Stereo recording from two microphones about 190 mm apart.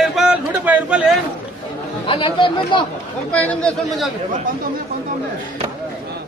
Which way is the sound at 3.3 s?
5° left (ahead or behind).